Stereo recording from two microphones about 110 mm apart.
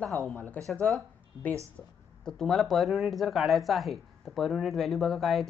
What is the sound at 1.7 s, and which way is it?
Speech, 5° left (ahead or behind).